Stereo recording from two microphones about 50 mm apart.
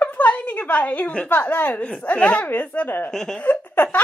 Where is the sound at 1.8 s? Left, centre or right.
Left.